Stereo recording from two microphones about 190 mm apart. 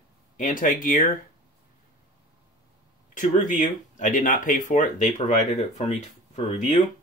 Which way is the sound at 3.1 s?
40° left (ahead or behind).